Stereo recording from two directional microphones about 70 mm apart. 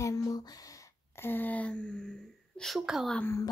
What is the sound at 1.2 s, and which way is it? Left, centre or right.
Speech, left.